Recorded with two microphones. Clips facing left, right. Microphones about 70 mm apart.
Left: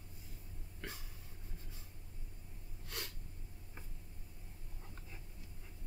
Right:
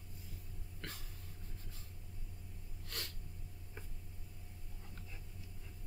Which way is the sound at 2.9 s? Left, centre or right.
Centre.